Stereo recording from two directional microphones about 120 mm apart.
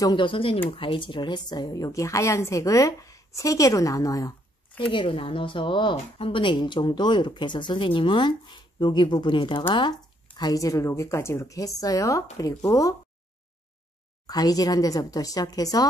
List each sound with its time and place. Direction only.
0.0 s a woman's voice: 40° left (ahead or behind)
4.9 s a woman's voice: 45° left (ahead or behind); by 12.9 s 30° left (ahead or behind)
14.2 s speech: 35° left (ahead or behind)